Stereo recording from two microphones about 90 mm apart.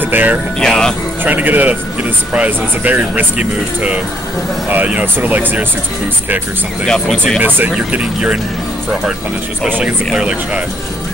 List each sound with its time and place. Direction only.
0.0 s speech: 20° right (ahead or behind)
0.6 s speech: 5° left (ahead or behind)
1.2 s speech: 20° right (ahead or behind)
6.9 s speech: centre (ahead or behind)
7.4 s speech: 20° right (ahead or behind)
10.1 s speech: 10° right (ahead or behind)